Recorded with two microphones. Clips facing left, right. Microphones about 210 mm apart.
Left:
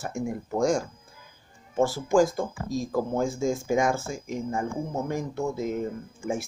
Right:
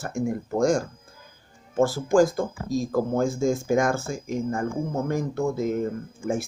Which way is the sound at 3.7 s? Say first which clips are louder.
Right 2 dB; 50° right (ahead or behind).